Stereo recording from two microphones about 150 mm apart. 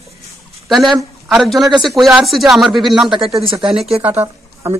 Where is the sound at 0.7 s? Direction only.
Centre (ahead or behind).